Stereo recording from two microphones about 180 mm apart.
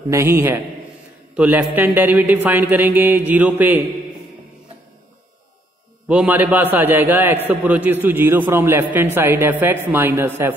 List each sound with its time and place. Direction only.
0.1 s a man's voice: 15° right (ahead or behind)
6.0 s a man's voice: 10° right (ahead or behind)